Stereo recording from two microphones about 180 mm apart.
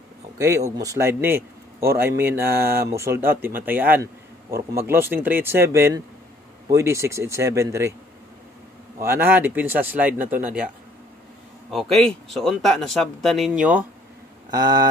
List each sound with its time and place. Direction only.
0.4 s speech: 15° right (ahead or behind)
2.6 s speech: 60° right (ahead or behind)
2.9 s speech: 15° right (ahead or behind)
9.0 s speech: 10° right (ahead or behind)
11.7 s speech: centre (ahead or behind)
14.5 s a sound: 20° right (ahead or behind)